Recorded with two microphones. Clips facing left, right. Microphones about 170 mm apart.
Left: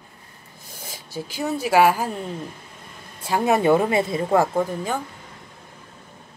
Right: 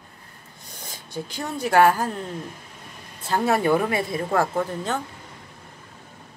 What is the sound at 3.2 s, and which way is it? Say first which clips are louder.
A woman's voice: left 2 dB; 10° left (ahead or behind).